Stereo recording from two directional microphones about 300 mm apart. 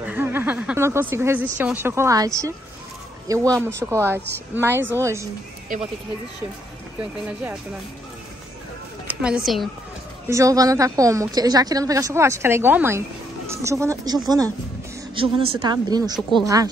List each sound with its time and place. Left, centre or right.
0.0 s a sound: centre
1.6 s a woman's voice: centre
5.7 s speech: right
9.2 s a woman's voice: centre
16.2 s speech: centre